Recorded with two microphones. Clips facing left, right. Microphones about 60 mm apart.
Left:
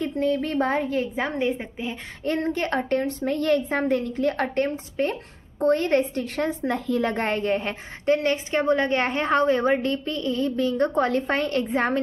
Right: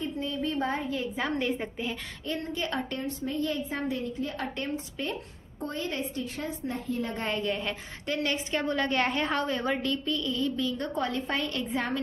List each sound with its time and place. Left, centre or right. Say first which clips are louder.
0.0 s a woman's voice: left 8 dB; left
1.1 s a woman's voice: left 4 dB; left
2.2 s a woman's voice: left 8 dB; left
4.6 s a woman's voice: left 8 dB; left
5.6 s a woman's voice: left 13 dB; left
7.2 s a woman's voice: left 6 dB; left